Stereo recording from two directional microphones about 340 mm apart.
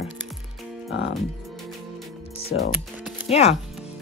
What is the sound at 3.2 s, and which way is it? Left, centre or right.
Speech, centre.